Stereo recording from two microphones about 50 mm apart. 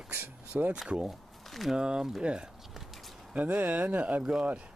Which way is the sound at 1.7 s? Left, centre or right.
Centre.